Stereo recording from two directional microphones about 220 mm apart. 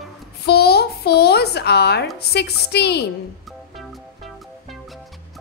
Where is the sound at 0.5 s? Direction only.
45° left (ahead or behind).